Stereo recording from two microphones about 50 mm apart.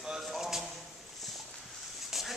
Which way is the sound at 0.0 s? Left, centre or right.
Centre.